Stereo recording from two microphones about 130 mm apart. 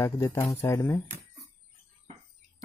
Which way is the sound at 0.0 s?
20° left (ahead or behind).